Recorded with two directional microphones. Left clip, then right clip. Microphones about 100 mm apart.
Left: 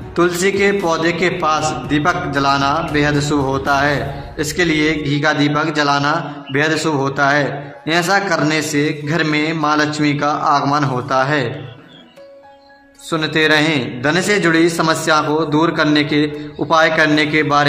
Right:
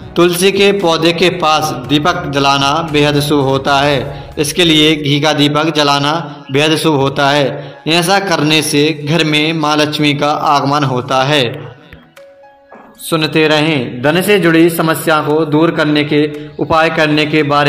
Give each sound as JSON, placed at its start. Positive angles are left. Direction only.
{"t": 0.1, "sound": "a man's voice", "side_deg": -15}
{"t": 13.1, "sound": "a man's voice", "side_deg": -20}